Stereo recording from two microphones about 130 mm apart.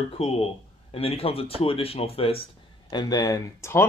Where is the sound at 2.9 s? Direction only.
30° left (ahead or behind).